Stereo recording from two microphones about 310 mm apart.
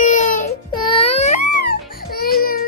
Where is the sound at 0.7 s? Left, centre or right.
Centre.